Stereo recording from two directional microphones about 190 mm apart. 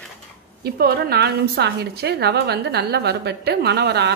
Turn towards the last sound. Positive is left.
turn(degrees=-65)  # may be behind; listen again after turning